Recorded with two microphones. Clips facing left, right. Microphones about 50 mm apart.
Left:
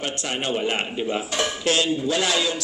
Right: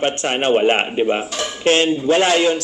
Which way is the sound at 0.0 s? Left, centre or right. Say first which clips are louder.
Right 9 dB; right.